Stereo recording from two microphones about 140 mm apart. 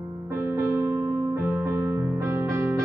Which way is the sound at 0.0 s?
20° right (ahead or behind).